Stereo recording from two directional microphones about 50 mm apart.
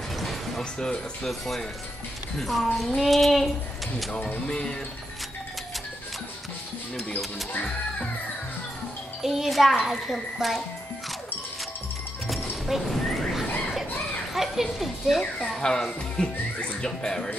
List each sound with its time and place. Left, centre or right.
0.2 s music: centre
0.7 s speech: centre
1.4 s a child's voice: centre
4.5 s speech: centre
9.2 s a child's voice: centre
12.3 s music: centre
14.3 s speech: centre
15.5 s speech: centre